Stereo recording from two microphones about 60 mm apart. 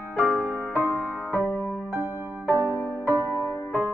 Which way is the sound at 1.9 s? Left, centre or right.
Right.